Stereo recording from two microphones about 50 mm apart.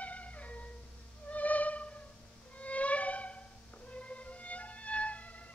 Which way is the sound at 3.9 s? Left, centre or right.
Left.